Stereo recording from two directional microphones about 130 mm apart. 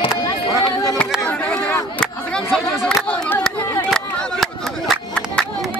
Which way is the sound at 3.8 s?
5° left (ahead or behind).